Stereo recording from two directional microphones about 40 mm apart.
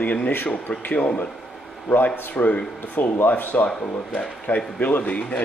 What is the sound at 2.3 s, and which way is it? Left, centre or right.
Speech, left.